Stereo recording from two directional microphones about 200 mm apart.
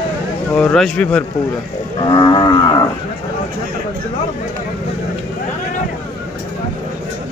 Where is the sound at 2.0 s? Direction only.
20° left (ahead or behind).